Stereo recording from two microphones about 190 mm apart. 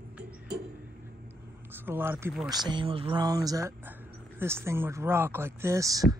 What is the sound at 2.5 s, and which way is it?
Speech, 25° right (ahead or behind).